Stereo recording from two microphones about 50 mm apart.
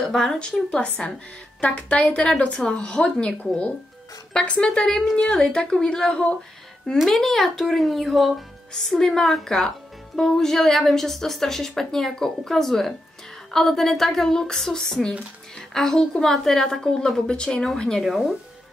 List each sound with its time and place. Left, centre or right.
0.0 s a woman's voice: centre
0.7 s a woman's voice: left
18.0 s speech: centre